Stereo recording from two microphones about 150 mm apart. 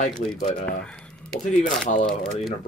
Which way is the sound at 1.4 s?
55° left (ahead or behind).